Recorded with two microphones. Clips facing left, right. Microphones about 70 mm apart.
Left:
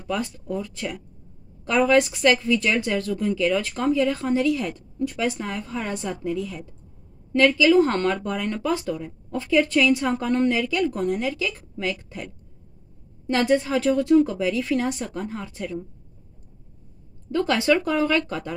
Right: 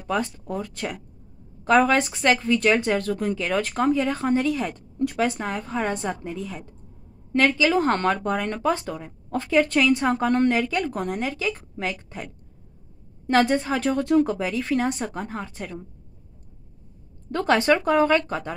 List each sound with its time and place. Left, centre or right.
0.0 s speech: right
5.2 s speech: right
7.3 s speech: right
8.0 s speech: right
13.3 s speech: right
17.3 s speech: right